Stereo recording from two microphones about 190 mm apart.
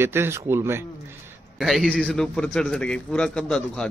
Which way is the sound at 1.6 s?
Centre (ahead or behind).